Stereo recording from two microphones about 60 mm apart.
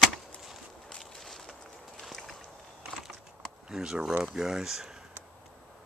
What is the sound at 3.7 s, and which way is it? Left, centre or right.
Speech, centre.